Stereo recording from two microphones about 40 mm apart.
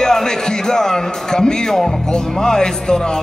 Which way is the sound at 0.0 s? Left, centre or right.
Centre.